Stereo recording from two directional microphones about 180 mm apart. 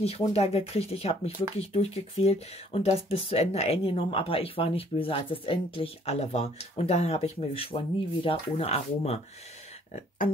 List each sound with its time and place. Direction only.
0.3 s speech: 35° left (ahead or behind)
9.9 s speech: 50° left (ahead or behind)